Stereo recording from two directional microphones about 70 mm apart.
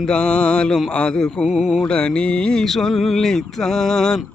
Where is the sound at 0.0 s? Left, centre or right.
Centre.